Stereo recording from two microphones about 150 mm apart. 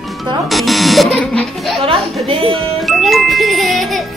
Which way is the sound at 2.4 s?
Centre (ahead or behind).